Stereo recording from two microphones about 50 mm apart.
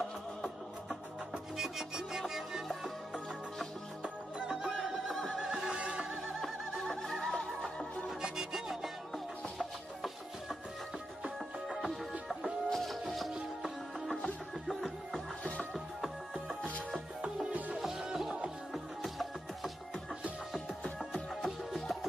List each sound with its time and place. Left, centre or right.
1.6 s music: centre
4.0 s music: centre
4.6 s music: centre
5.4 s neigh: centre
5.8 s music: right
6.4 s a sound: centre
7.2 s music: centre
9.1 s music: centre
11.7 s music: centre
14.7 s music: centre
17.5 s music: right
18.0 s music: centre
18.7 s music: centre